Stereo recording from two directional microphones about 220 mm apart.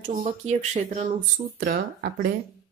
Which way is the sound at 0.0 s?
35° right (ahead or behind).